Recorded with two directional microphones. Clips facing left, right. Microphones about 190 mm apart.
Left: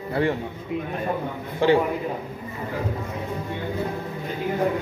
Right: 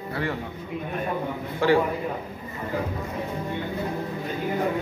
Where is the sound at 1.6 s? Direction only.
20° left (ahead or behind).